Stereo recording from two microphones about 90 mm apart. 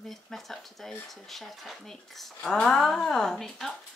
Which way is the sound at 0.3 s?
Centre (ahead or behind).